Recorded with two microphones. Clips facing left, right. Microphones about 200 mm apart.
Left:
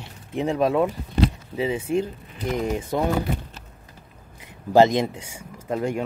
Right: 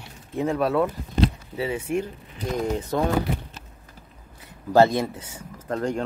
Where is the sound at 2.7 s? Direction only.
15° left (ahead or behind).